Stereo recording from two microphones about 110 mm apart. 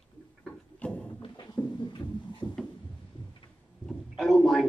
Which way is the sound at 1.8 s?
45° left (ahead or behind).